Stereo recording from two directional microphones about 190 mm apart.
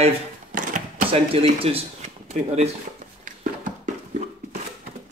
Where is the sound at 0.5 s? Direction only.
40° right (ahead or behind).